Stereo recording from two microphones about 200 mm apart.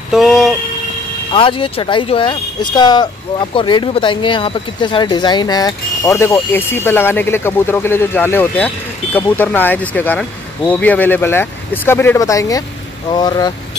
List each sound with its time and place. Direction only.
0.1 s vehicle: centre (ahead or behind)
1.3 s speech: 25° left (ahead or behind)